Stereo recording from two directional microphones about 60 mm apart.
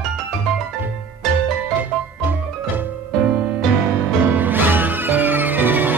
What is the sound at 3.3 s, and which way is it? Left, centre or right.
Music, centre.